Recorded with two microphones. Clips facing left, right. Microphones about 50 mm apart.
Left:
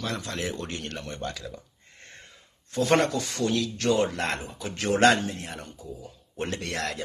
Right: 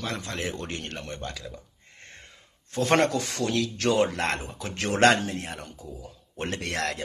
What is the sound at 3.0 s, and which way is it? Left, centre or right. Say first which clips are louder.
Speech: right 1 dB; right.